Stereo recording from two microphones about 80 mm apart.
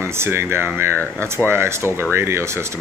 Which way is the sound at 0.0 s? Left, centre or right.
Right.